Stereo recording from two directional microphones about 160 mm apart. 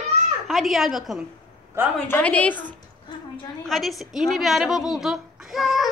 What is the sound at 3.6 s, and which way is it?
A woman's voice, centre (ahead or behind).